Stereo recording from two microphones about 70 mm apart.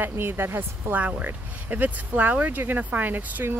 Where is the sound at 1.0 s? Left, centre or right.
Right.